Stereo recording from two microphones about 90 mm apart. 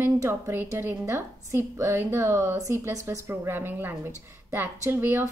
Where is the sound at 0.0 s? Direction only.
25° right (ahead or behind).